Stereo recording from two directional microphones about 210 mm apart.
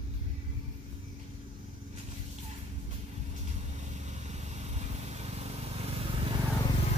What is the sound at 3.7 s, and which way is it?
Vehicle, 35° right (ahead or behind).